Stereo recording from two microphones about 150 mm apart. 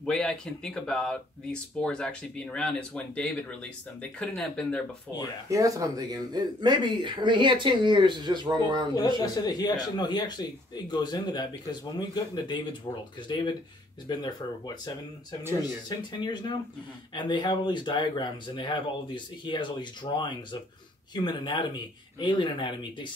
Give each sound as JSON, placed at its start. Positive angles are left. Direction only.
{"t": 0.0, "sound": "speech", "side_deg": 5}
{"t": 5.5, "sound": "speech", "side_deg": -20}
{"t": 9.2, "sound": "speech", "side_deg": 25}